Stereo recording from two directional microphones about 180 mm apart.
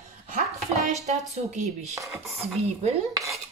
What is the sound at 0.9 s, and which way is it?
Speech, 40° right (ahead or behind).